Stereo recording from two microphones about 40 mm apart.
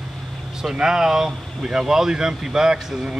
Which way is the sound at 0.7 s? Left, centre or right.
Centre.